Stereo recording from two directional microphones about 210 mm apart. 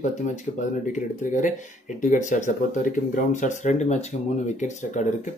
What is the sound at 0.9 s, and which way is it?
Speech, 35° left (ahead or behind).